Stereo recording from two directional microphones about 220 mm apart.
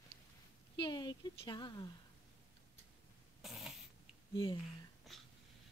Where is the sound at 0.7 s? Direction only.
20° left (ahead or behind).